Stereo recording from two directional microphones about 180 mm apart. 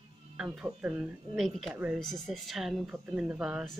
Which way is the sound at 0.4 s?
Centre (ahead or behind).